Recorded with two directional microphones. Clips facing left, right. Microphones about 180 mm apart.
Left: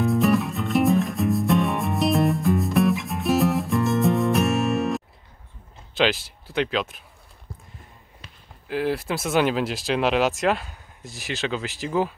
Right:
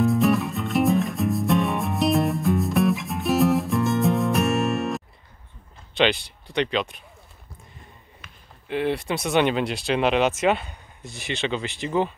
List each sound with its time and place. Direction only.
0.0 s music: centre (ahead or behind)
5.9 s speech: centre (ahead or behind)
8.2 s basketball bounce: 35° left (ahead or behind)
8.6 s speech: centre (ahead or behind)